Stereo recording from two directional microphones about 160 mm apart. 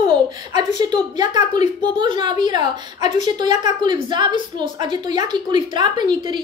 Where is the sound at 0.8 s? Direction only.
25° right (ahead or behind).